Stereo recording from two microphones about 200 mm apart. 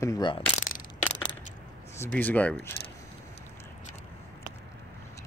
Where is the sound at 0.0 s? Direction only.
20° left (ahead or behind).